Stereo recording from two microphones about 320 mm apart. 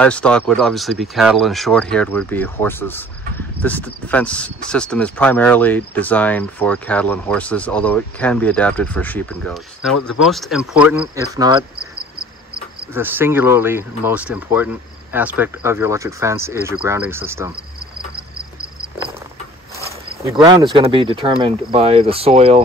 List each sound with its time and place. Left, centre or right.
0.0 s speech: centre
12.9 s speech: centre
20.2 s speech: centre